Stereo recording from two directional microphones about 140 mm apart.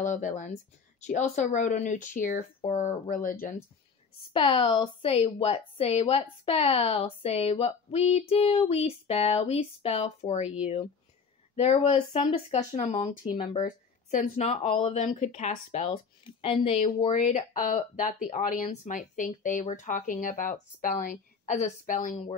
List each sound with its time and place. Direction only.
0.0 s speech: 65° left (ahead or behind)
4.3 s a woman's voice: 40° left (ahead or behind)
13.6 s a woman's voice: 60° left (ahead or behind)
15.9 s speech: 35° left (ahead or behind)
16.7 s speech: 55° left (ahead or behind); by 22.1 s 70° left (ahead or behind)